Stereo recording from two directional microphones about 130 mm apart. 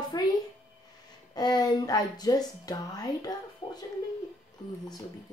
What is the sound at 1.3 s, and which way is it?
Speech, 30° left (ahead or behind).